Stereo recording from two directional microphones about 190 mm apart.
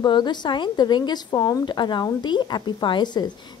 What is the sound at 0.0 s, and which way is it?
A woman's voice, 25° left (ahead or behind).